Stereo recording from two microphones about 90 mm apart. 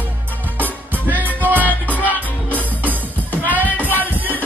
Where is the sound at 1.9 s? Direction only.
20° left (ahead or behind).